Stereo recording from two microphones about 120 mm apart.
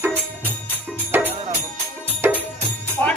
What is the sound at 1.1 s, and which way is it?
Music, 15° right (ahead or behind).